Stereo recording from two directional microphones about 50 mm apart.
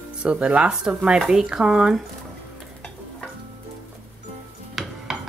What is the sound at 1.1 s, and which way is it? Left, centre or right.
Speech, centre.